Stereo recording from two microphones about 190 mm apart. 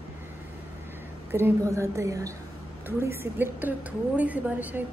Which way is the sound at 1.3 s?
15° right (ahead or behind).